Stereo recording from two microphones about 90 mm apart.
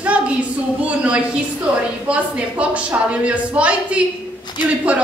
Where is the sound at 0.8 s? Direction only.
15° right (ahead or behind).